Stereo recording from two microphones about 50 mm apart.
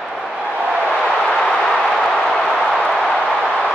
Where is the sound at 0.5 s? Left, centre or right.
Right.